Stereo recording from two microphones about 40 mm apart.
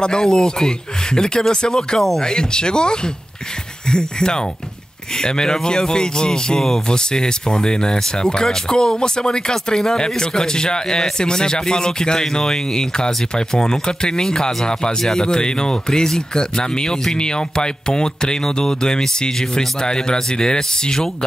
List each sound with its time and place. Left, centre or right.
0.0 s speech: centre